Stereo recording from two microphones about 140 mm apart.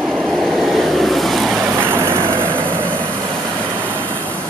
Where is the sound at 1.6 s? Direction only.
15° right (ahead or behind).